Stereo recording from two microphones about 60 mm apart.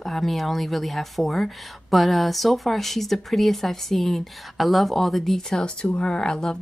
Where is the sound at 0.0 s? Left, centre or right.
Centre.